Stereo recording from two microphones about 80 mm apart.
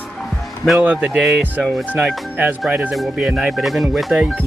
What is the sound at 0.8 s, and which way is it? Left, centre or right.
Speech, centre.